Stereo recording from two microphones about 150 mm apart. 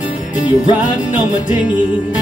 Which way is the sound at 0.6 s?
55° left (ahead or behind).